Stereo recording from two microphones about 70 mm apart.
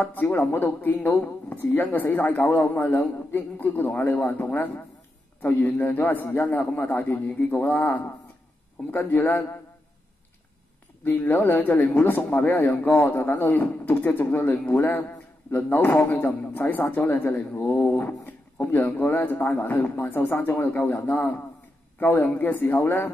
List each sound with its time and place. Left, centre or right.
0.0 s a man's voice: left
11.1 s a man's voice: left